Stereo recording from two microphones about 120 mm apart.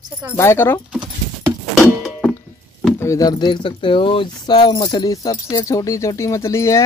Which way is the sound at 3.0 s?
25° left (ahead or behind).